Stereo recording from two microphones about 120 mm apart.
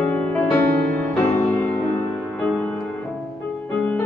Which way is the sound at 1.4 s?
20° left (ahead or behind).